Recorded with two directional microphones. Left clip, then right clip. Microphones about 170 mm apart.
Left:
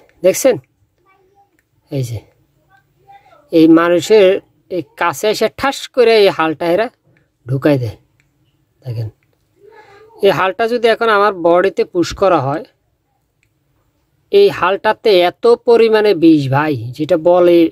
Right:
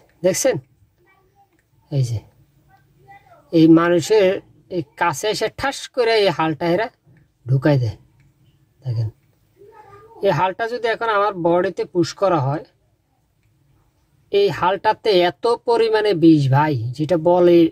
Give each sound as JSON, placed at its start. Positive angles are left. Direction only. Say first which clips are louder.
{"t": 0.0, "sound": "speech", "louder": "left 6 dB", "side_deg": 25}
{"t": 1.9, "sound": "speech", "louder": "left 5 dB", "side_deg": 25}
{"t": 3.4, "sound": "speech", "louder": "left 4 dB", "side_deg": 25}
{"t": 10.2, "sound": "speech", "louder": "left 6 dB", "side_deg": 35}
{"t": 14.3, "sound": "speech", "louder": "left 6 dB", "side_deg": 25}